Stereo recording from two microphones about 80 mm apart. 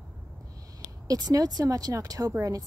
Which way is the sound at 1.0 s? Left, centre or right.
Right.